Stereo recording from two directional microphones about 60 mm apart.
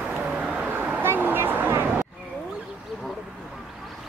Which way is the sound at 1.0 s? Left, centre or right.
Right.